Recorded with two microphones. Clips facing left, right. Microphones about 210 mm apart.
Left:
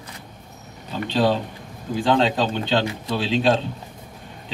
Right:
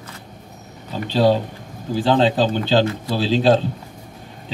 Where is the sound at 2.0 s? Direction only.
35° right (ahead or behind).